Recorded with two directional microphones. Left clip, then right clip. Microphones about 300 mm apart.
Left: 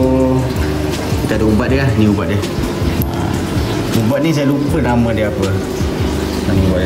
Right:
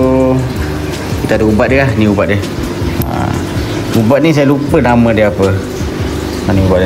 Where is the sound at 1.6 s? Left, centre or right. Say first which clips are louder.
Right 5 dB; centre.